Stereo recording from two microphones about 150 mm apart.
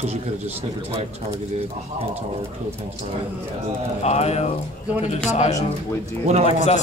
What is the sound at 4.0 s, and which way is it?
Speech, 45° left (ahead or behind).